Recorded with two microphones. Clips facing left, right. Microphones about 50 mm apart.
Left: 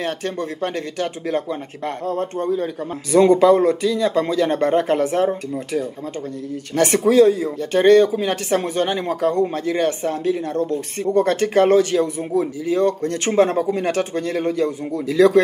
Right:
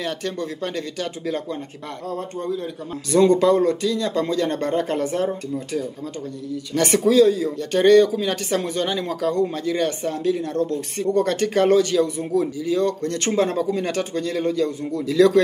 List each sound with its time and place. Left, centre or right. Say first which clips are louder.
0.0 s speech: left 2 dB; left
2.0 s speech: left 4 dB; left